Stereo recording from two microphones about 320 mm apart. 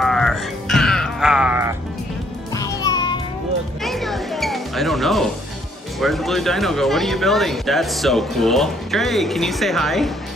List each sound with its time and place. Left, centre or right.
0.0 s music: centre
2.5 s music: centre
3.8 s music: centre
5.9 s speech: centre